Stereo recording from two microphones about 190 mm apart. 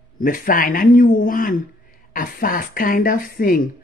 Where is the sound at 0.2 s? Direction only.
45° left (ahead or behind).